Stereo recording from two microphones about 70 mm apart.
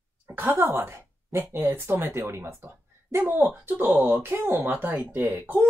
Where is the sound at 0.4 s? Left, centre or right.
Right.